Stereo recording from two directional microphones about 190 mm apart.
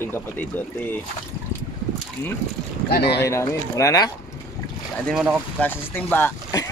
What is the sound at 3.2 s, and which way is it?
Speech, 15° left (ahead or behind).